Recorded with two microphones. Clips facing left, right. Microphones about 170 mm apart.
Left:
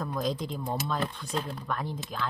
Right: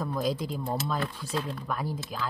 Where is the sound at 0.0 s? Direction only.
5° right (ahead or behind).